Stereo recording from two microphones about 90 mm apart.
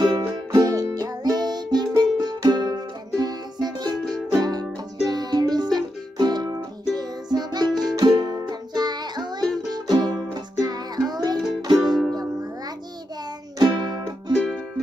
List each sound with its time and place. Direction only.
0.0 s music: 55° right (ahead or behind)
11.7 s music: centre (ahead or behind)
13.6 s music: 55° right (ahead or behind)